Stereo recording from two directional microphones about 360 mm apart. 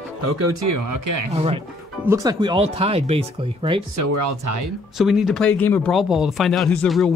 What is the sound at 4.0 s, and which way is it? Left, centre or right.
Speech, right.